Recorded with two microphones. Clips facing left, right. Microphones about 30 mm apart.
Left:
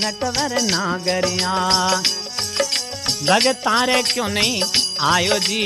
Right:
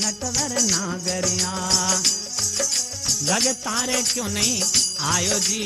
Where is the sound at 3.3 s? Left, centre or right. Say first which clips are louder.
Left 9 dB; left.